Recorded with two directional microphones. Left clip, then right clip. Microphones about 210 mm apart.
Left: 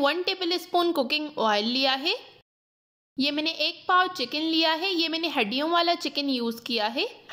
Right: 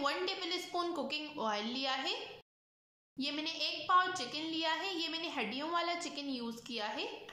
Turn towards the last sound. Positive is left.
turn(degrees=45)  # may be behind; listen again after turning